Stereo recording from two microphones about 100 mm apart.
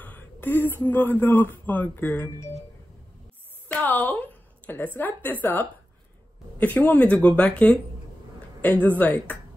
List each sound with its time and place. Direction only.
0.0 s speech: 20° left (ahead or behind)
3.6 s a woman's voice: 15° left (ahead or behind)
8.8 s speech: 15° left (ahead or behind)